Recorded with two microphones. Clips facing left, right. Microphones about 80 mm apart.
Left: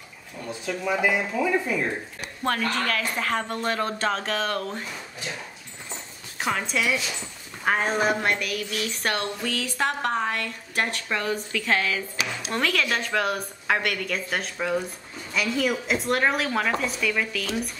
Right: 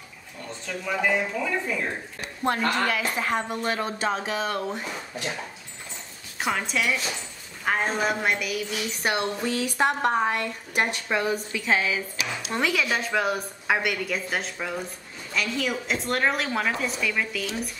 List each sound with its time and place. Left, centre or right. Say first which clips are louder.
0.5 s speech: left 4 dB; centre
2.4 s a woman's voice: right 2 dB; centre
6.4 s a woman's voice: even; centre